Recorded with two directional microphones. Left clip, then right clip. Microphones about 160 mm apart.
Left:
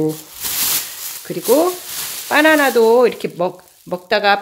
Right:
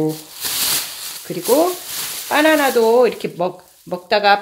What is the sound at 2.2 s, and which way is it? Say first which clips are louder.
Speech: left 2 dB; 40° left (ahead or behind).